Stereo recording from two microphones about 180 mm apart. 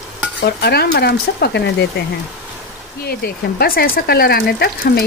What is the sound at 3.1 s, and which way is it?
Speech, 55° left (ahead or behind).